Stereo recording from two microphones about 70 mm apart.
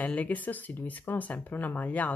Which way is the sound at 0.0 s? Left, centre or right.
Left.